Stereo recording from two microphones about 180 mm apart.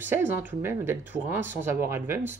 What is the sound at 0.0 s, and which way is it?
Speech, 10° right (ahead or behind).